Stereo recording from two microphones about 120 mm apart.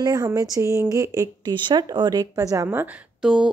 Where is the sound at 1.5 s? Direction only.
40° right (ahead or behind).